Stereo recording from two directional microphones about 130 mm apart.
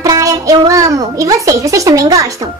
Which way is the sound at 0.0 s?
30° right (ahead or behind).